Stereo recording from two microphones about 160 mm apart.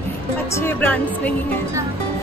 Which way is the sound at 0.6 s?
15° left (ahead or behind).